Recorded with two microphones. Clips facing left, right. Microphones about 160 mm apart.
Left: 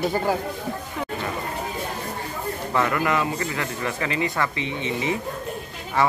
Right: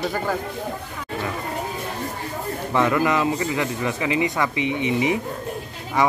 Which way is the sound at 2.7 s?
20° right (ahead or behind).